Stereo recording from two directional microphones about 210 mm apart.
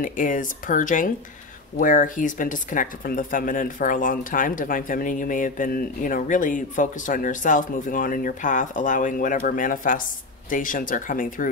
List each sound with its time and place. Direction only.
0.0 s speech: 40° left (ahead or behind)